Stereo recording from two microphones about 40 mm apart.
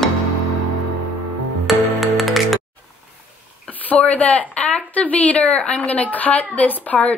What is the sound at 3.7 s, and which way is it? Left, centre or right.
A woman's voice, left.